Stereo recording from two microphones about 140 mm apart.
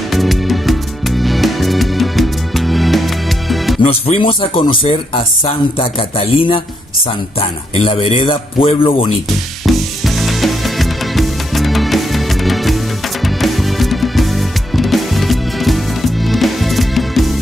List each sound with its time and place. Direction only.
0.1 s music: centre (ahead or behind)
3.8 s speech: 45° left (ahead or behind)
9.6 s music: centre (ahead or behind)